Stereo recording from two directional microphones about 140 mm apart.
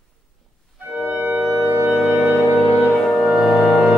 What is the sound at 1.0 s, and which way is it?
Music, 10° right (ahead or behind).